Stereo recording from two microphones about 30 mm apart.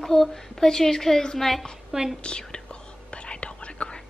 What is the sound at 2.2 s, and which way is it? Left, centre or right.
Speech, left.